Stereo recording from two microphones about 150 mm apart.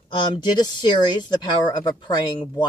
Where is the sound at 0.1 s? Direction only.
30° left (ahead or behind).